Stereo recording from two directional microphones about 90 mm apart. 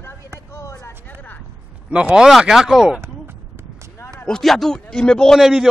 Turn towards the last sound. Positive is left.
turn(degrees=5)  # may be behind; listen again after turning